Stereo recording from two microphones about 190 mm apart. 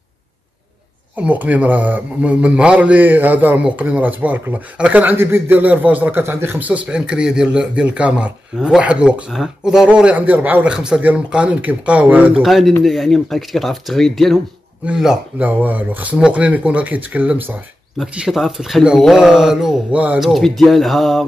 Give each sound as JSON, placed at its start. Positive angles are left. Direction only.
{"t": 1.1, "sound": "a man's voice", "side_deg": -10}